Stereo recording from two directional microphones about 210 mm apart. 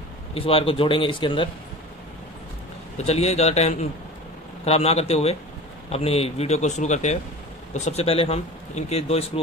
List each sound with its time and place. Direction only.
0.3 s a man's voice: 25° left (ahead or behind)
3.0 s a man's voice: 30° left (ahead or behind)